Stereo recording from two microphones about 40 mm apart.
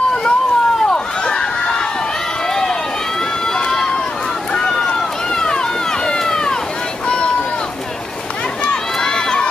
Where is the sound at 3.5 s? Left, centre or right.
Centre.